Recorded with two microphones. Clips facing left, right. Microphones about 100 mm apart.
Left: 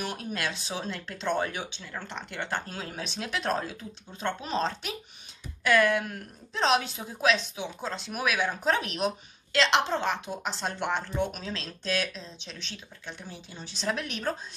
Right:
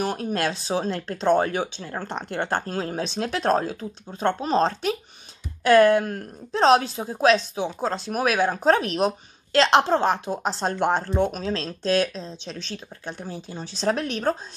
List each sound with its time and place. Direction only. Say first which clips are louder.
0.0 s a woman's voice: right 8 dB; 40° right (ahead or behind)